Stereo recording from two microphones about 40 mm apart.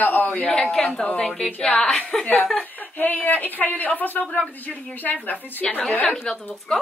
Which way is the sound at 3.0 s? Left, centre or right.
Left.